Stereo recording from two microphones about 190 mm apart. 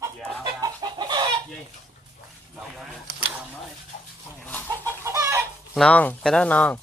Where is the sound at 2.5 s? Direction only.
Centre (ahead or behind).